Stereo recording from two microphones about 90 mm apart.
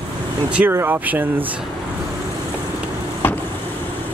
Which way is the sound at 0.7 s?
25° right (ahead or behind).